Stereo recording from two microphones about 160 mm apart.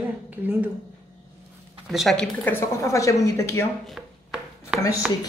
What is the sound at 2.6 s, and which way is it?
Speech, 20° left (ahead or behind).